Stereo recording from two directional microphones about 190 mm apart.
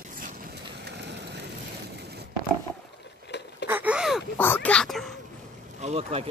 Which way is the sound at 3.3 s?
65° left (ahead or behind).